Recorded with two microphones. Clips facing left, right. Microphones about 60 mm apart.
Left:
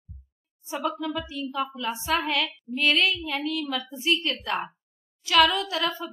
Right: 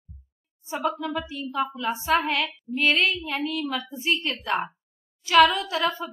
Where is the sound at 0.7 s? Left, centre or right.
Centre.